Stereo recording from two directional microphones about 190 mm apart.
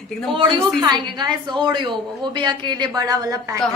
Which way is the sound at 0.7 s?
20° right (ahead or behind).